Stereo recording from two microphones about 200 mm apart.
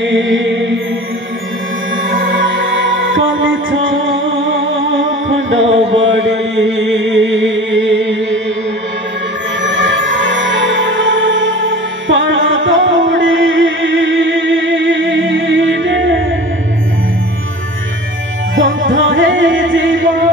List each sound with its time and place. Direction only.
0.0 s music: 70° right (ahead or behind)
2.0 s music: 75° right (ahead or behind)
5.8 s mantra: 30° right (ahead or behind)
6.1 s music: 65° right (ahead or behind)
9.6 s music: 65° right (ahead or behind)
18.6 s music: 75° right (ahead or behind)